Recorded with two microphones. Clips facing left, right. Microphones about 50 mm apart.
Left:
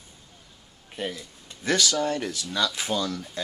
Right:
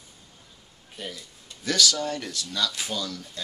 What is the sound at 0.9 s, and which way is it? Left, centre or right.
Speech, left.